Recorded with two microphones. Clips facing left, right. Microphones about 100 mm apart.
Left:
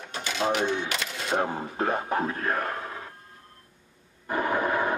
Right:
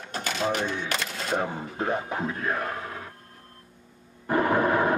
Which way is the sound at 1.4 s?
5° left (ahead or behind).